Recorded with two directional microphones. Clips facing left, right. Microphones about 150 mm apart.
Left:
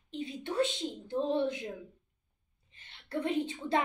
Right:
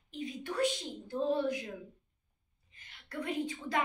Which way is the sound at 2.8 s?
30° left (ahead or behind).